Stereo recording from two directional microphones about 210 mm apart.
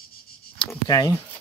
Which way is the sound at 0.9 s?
20° left (ahead or behind).